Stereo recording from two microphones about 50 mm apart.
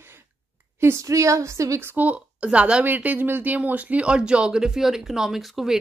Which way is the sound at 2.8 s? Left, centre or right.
Right.